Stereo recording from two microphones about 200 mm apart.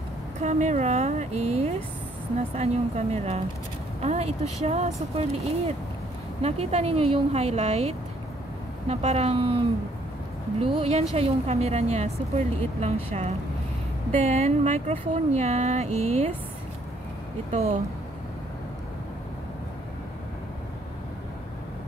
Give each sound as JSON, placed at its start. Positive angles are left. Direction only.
{"t": 0.4, "sound": "speech", "side_deg": -35}
{"t": 6.4, "sound": "speech", "side_deg": -30}
{"t": 10.6, "sound": "a woman's voice", "side_deg": -25}
{"t": 14.3, "sound": "speech", "side_deg": -30}
{"t": 17.5, "sound": "speech", "side_deg": -35}